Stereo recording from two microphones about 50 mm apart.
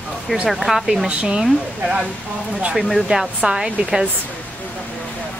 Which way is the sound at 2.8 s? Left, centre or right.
Centre.